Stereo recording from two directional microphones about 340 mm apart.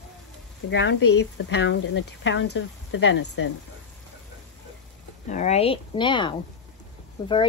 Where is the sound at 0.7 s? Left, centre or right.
Left.